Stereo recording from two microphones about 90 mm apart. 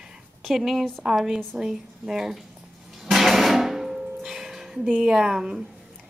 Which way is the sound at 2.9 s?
Centre (ahead or behind).